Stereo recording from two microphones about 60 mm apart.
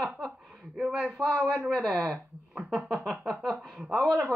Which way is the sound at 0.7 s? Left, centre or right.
Centre.